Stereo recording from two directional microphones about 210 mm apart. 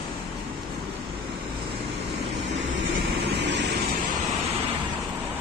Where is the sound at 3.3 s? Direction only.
55° right (ahead or behind).